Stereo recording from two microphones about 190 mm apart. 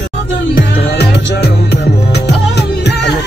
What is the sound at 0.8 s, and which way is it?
Music, 60° left (ahead or behind).